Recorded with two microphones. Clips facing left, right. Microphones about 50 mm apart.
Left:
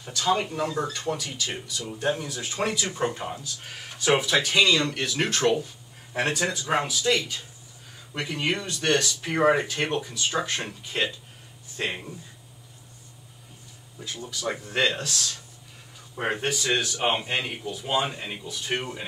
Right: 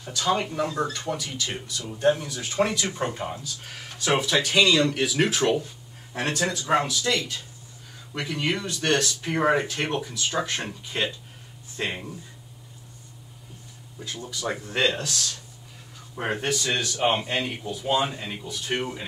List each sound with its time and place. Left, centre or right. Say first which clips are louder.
0.0 s speech: even; centre
6.1 s speech: left 1 dB; centre
14.4 s speech: right 1 dB; centre
16.3 s speech: even; centre
17.0 s speech: right 2 dB; centre